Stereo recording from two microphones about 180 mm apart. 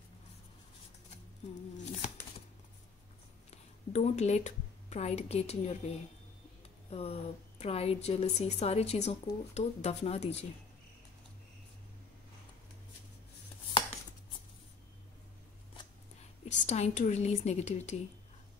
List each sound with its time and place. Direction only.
3.4 s a woman's voice: 40° left (ahead or behind)
16.4 s a woman's voice: 40° left (ahead or behind)